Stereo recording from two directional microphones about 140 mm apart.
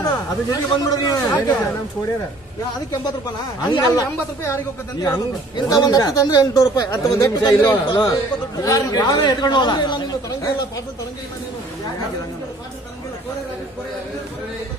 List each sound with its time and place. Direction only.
0.0 s a man's voice: 25° left (ahead or behind)
3.6 s speech: 30° left (ahead or behind)